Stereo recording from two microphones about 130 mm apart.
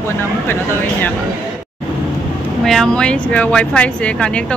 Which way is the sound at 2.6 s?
Centre (ahead or behind).